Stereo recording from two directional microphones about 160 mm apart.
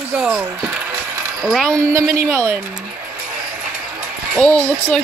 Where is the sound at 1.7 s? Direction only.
20° right (ahead or behind).